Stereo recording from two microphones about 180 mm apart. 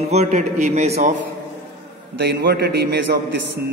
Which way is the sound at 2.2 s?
65° right (ahead or behind).